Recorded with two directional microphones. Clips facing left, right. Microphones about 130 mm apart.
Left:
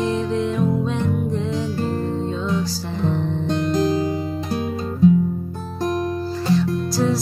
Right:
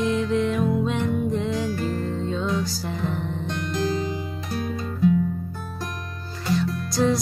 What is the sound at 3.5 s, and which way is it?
Music, 35° left (ahead or behind).